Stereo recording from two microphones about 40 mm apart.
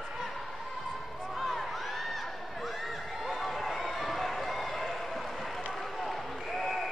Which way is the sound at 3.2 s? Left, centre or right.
Centre.